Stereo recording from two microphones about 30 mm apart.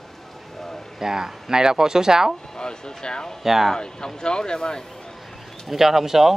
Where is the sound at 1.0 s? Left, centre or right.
Centre.